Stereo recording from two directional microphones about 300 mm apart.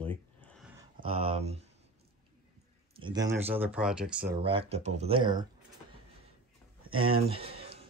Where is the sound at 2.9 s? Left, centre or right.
Centre.